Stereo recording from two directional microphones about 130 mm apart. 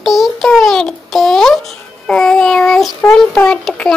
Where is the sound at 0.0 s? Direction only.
Centre (ahead or behind).